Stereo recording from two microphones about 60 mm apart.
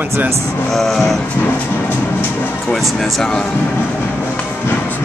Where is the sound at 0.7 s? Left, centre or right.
Centre.